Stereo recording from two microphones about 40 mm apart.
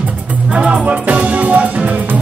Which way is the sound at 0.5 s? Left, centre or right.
Right.